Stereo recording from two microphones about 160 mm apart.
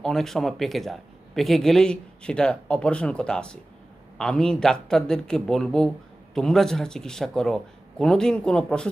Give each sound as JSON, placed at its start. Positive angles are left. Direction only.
{"t": 0.0, "sound": "a man's voice", "side_deg": 5}